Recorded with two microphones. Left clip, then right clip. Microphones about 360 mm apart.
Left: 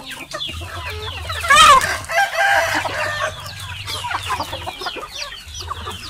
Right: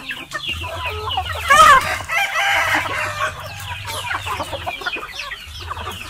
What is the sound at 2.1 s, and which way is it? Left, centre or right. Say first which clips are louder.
Chicken: left 2 dB; left.